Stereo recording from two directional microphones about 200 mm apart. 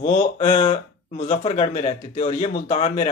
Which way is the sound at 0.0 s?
30° left (ahead or behind).